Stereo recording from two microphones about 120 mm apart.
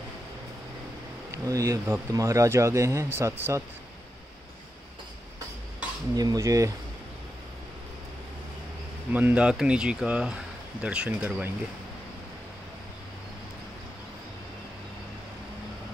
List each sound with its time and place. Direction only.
1.3 s speech: 25° right (ahead or behind)
6.1 s speech: 30° right (ahead or behind)
9.1 s speech: 10° right (ahead or behind)